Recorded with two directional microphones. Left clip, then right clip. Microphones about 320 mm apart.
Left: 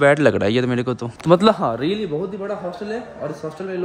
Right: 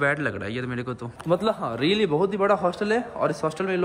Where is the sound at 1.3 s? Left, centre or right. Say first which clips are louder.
Left 9 dB; left.